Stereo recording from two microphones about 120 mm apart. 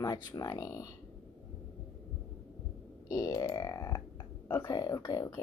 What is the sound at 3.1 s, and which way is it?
Speech, 30° left (ahead or behind).